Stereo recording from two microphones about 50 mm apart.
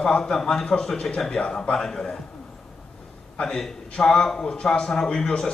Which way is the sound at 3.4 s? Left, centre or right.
Centre.